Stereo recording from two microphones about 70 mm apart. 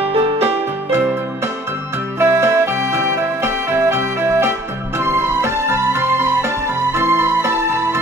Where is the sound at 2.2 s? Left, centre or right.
Right.